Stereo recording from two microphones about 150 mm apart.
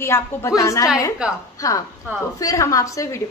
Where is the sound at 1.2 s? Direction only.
5° right (ahead or behind).